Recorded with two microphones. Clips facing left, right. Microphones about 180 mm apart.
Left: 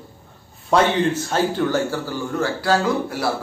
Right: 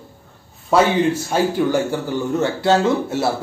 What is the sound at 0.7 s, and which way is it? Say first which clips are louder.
Speech: right 2 dB; 10° right (ahead or behind).